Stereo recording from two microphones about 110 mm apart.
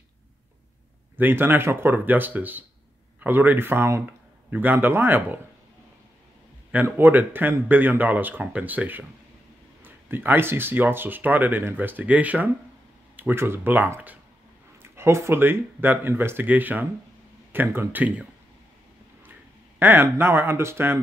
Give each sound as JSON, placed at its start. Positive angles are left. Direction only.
{"t": 1.1, "sound": "speech", "side_deg": -20}
{"t": 6.7, "sound": "speech", "side_deg": -15}
{"t": 19.8, "sound": "speech", "side_deg": -20}